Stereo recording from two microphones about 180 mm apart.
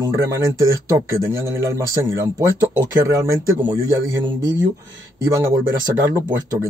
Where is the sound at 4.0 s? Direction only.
90° right.